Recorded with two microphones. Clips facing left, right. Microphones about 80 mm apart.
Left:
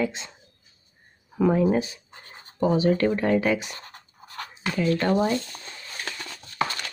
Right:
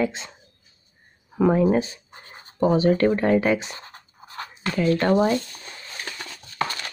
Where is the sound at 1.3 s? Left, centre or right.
Right.